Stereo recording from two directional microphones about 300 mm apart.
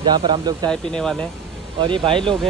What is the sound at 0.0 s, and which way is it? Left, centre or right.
Speech, centre.